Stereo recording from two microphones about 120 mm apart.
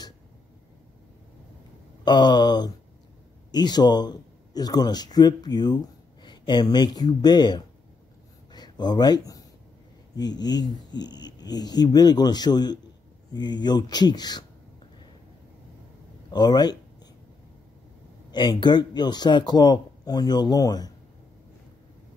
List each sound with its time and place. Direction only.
2.0 s speech: 35° left (ahead or behind)
8.5 s a sound: 35° left (ahead or behind)
10.1 s speech: 35° left (ahead or behind)
16.3 s speech: 35° left (ahead or behind)
18.3 s speech: 40° left (ahead or behind)